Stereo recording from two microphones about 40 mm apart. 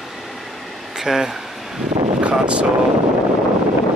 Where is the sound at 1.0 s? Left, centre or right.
Centre.